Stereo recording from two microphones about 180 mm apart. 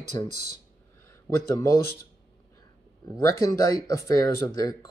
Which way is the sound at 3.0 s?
20° left (ahead or behind).